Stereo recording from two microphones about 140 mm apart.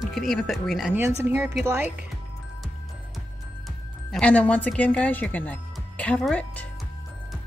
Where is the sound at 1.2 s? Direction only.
20° right (ahead or behind).